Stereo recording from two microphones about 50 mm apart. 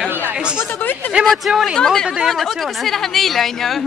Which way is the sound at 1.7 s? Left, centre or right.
Centre.